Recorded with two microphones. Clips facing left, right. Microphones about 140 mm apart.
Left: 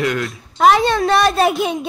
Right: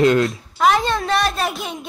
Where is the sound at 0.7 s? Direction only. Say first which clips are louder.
Left 6 dB; 80° left.